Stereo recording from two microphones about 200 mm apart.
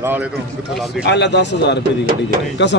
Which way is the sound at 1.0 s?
60° left (ahead or behind).